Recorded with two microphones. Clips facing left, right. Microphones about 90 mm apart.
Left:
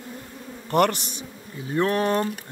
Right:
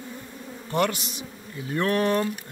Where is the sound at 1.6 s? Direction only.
25° left (ahead or behind).